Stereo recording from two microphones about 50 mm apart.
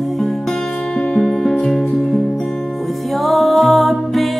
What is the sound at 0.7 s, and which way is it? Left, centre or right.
Music, centre.